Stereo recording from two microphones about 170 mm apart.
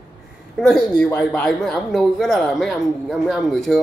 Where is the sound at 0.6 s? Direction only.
5° left (ahead or behind).